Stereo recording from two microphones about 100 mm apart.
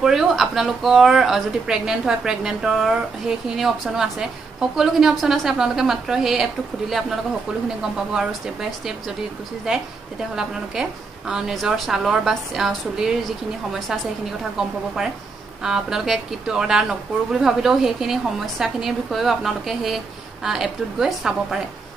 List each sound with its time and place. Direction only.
0.0 s a woman's voice: 5° right (ahead or behind)
15.6 s speech: 5° right (ahead or behind)